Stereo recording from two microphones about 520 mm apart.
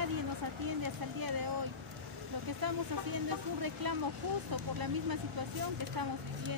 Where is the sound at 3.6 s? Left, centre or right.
Right.